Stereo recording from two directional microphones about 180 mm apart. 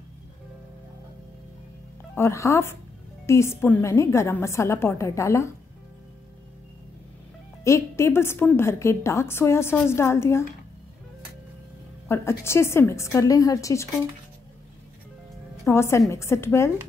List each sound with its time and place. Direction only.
2.1 s a woman's voice: 15° left (ahead or behind)
7.6 s a woman's voice: 15° left (ahead or behind)
12.1 s a woman's voice: 15° left (ahead or behind)
15.7 s a woman's voice: 15° left (ahead or behind)